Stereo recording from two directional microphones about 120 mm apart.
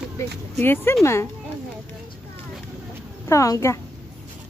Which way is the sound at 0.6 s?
20° left (ahead or behind).